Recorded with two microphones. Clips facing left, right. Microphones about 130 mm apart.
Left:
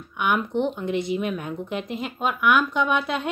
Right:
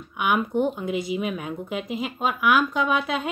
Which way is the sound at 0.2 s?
5° right (ahead or behind).